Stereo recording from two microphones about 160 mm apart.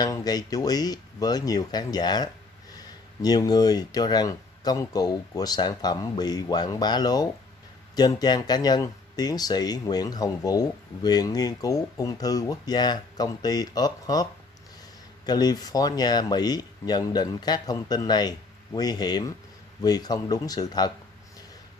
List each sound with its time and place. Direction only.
0.0 s speech: 25° left (ahead or behind)
15.2 s speech: 25° left (ahead or behind)